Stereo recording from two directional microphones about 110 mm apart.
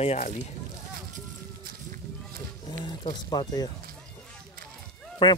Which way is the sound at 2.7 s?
40° left (ahead or behind).